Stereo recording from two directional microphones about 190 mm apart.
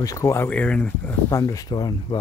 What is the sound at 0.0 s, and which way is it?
Speech, 15° left (ahead or behind).